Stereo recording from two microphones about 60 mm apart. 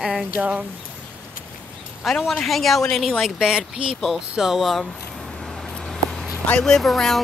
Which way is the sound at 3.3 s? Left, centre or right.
Centre.